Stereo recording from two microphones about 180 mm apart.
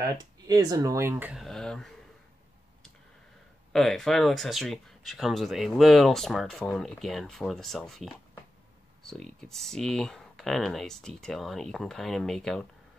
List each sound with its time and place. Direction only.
0.2 s speech: 20° right (ahead or behind)
1.3 s speech: centre (ahead or behind)
3.7 s speech: centre (ahead or behind)